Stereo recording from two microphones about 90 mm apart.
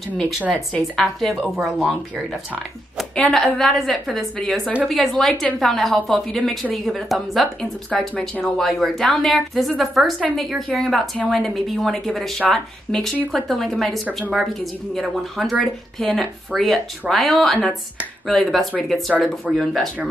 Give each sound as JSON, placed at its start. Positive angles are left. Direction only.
{"t": 0.4, "sound": "a woman's voice", "side_deg": -15}
{"t": 0.9, "sound": "speech", "side_deg": 0}